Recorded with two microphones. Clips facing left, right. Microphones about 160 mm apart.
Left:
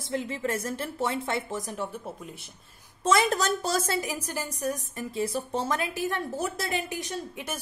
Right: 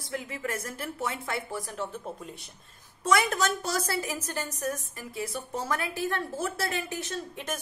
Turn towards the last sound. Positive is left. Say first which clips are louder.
# even
turn(degrees=10)  # may be behind; listen again after turning